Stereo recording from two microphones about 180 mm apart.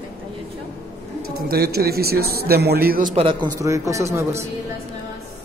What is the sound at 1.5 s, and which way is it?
A man's voice, 60° right (ahead or behind).